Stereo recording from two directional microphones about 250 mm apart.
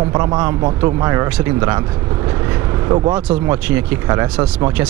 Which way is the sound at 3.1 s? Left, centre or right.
Centre.